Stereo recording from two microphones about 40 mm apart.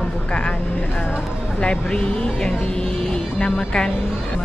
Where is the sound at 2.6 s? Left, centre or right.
Left.